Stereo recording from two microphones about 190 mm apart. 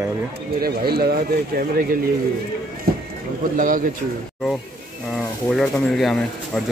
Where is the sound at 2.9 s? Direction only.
55° right (ahead or behind).